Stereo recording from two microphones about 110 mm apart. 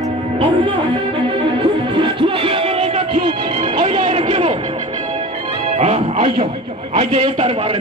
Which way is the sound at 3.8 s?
65° right (ahead or behind).